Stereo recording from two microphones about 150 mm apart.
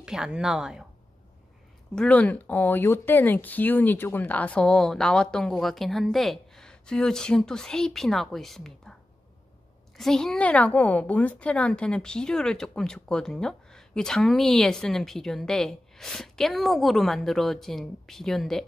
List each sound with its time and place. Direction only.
0.0 s a woman's voice: 5° right (ahead or behind)
2.0 s a woman's voice: 10° left (ahead or behind)
9.9 s a woman's voice: 5° left (ahead or behind)